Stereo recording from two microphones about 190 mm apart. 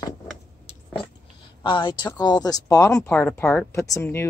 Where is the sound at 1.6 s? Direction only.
25° left (ahead or behind).